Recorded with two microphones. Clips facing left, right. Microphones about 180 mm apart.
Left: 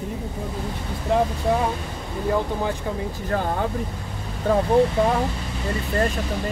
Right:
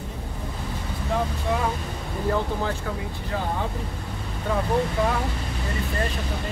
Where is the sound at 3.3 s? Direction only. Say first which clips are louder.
Left 4 dB; 55° left (ahead or behind).